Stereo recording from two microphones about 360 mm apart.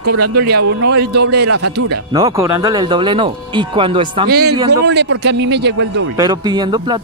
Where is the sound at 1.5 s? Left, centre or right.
Right.